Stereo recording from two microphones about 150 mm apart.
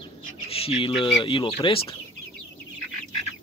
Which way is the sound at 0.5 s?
40° left (ahead or behind).